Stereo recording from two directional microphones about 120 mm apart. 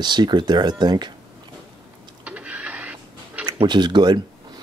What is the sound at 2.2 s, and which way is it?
Printer, 10° right (ahead or behind).